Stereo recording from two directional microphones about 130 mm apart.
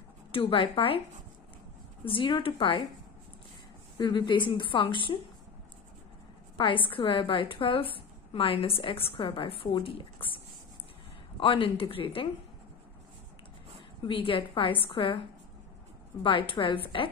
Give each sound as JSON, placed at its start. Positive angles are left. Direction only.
{"t": 0.3, "sound": "a woman's voice", "side_deg": 45}
{"t": 2.0, "sound": "a woman's voice", "side_deg": 40}
{"t": 4.0, "sound": "a woman's voice", "side_deg": 35}
{"t": 6.5, "sound": "a woman's voice", "side_deg": 40}
{"t": 14.0, "sound": "a woman's voice", "side_deg": 40}